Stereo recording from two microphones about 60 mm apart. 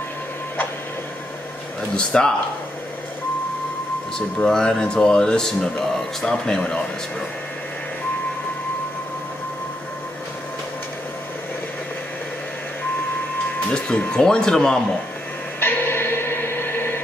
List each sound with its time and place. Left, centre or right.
2.0 s speech: centre
4.4 s speech: centre
13.7 s speech: centre
15.6 s music: left